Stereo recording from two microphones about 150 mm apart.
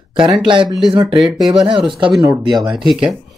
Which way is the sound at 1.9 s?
35° right (ahead or behind).